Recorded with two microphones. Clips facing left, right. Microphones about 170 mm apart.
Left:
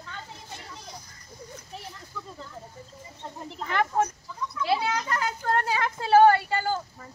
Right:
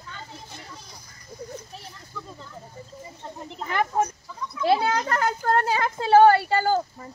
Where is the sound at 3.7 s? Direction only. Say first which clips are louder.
Right 1 dB; 15° right (ahead or behind).